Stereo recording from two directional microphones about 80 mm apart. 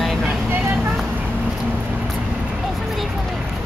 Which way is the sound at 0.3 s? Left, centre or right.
Right.